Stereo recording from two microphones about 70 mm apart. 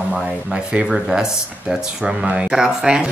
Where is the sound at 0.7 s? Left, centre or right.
Centre.